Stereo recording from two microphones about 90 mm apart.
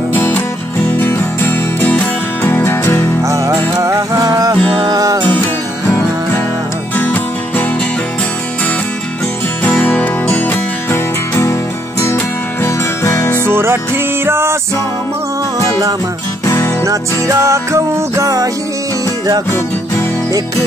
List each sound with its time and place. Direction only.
0.1 s music: 20° left (ahead or behind)
3.3 s music: 35° right (ahead or behind)
7.0 s music: 20° left (ahead or behind)
9.7 s music: 15° left (ahead or behind)
12.6 s music: 35° left (ahead or behind)
13.5 s music: 25° right (ahead or behind)
16.4 s music: 25° left (ahead or behind)
16.8 s music: 40° right (ahead or behind)